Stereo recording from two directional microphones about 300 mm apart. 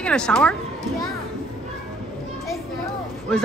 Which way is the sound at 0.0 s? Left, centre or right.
Centre.